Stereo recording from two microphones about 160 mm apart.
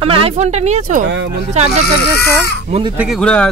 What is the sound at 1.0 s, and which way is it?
Speech, 90° right.